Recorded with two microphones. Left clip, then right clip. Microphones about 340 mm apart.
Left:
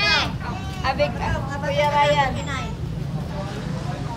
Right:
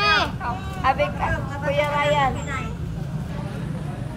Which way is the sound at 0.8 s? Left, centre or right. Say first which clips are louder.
Right 1 dB; right.